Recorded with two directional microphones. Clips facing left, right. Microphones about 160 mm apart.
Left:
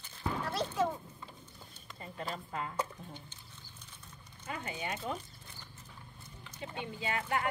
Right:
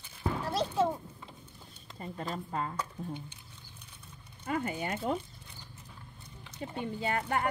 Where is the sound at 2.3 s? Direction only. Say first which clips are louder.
Right 4 dB; 35° right (ahead or behind).